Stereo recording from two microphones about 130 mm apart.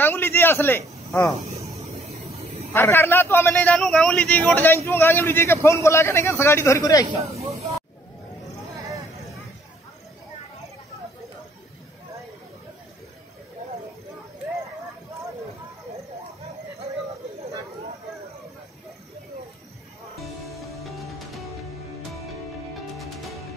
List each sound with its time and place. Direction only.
0.0 s a sound: 15° left (ahead or behind)
2.7 s a man's voice: 15° left (ahead or behind)
20.2 s music: centre (ahead or behind)